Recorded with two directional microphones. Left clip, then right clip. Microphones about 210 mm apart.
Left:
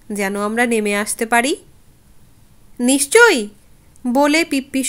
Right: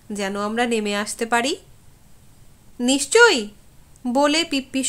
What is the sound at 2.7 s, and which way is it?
A woman's voice, 25° left (ahead or behind).